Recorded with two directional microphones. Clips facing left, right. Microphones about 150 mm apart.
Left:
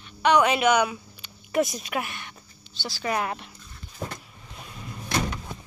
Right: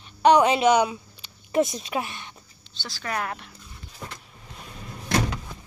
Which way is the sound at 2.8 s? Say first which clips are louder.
Left 3 dB; 10° left (ahead or behind).